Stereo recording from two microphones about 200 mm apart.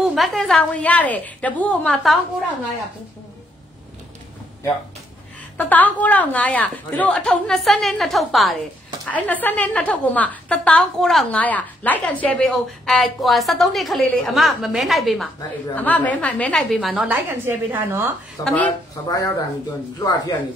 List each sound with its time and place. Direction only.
0.0 s a woman's voice: centre (ahead or behind)
5.6 s a woman's voice: 10° left (ahead or behind); by 18.1 s 10° right (ahead or behind)
18.4 s a woman's voice: 5° left (ahead or behind)
20.0 s speech: 20° left (ahead or behind)